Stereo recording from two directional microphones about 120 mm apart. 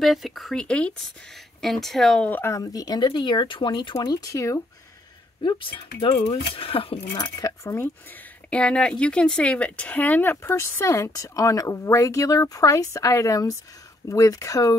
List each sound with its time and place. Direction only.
0.0 s speech: centre (ahead or behind)
2.2 s speech: 15° left (ahead or behind)
2.5 s speech: 30° left (ahead or behind)
5.4 s speech: 45° left (ahead or behind)
7.2 s a woman's voice: 30° left (ahead or behind)
8.5 s a woman's voice: 10° left (ahead or behind); by 14.8 s 25° left (ahead or behind)